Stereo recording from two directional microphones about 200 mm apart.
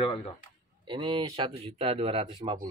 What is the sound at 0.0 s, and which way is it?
Speech, 20° left (ahead or behind).